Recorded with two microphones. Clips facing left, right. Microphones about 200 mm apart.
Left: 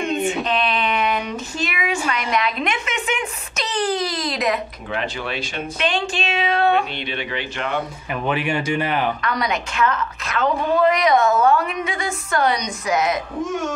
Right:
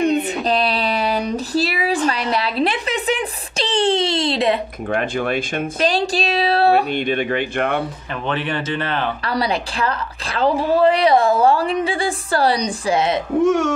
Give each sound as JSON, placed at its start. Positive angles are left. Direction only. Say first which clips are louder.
{"t": 0.0, "sound": "female singing", "louder": "right 4 dB", "side_deg": -35}
{"t": 2.3, "sound": "a sound", "louder": "right 3 dB", "side_deg": -35}
{"t": 4.8, "sound": "speech", "louder": "right 10 dB", "side_deg": -50}
{"t": 5.8, "sound": "a woman's voice", "louder": "right 4 dB", "side_deg": -35}
{"t": 6.9, "sound": "speech", "louder": "right 8 dB", "side_deg": -50}
{"t": 8.1, "sound": "speech", "louder": "left 2 dB", "side_deg": 10}
{"t": 9.2, "sound": "a woman's voice", "louder": "right 2 dB", "side_deg": -30}
{"t": 13.4, "sound": "speech", "louder": "right 8 dB", "side_deg": -70}